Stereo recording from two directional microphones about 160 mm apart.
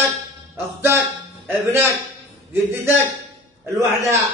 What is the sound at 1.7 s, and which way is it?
Speech, 15° right (ahead or behind).